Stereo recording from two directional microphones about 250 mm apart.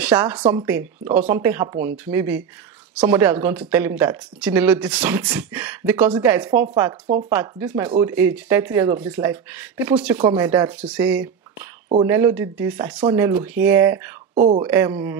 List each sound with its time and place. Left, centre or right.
0.0 s speech: centre
14.3 s speech: right
14.6 s speech: centre